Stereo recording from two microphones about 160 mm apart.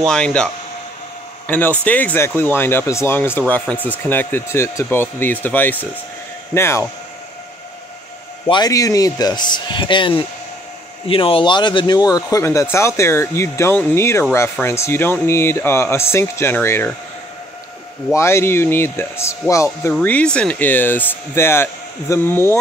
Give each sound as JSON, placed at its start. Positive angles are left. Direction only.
{"t": 0.0, "sound": "speech", "side_deg": 5}
{"t": 1.5, "sound": "speech", "side_deg": 10}
{"t": 8.5, "sound": "speech", "side_deg": 25}
{"t": 18.1, "sound": "speech", "side_deg": 15}